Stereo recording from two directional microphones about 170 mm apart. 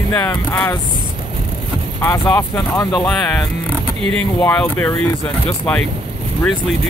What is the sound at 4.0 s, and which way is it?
Speech, 35° right (ahead or behind).